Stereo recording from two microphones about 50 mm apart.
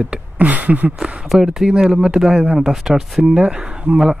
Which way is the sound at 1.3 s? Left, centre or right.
Centre.